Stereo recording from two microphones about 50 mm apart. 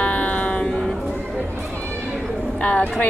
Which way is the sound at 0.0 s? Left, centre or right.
Left.